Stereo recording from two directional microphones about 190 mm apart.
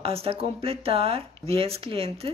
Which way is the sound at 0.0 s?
30° right (ahead or behind).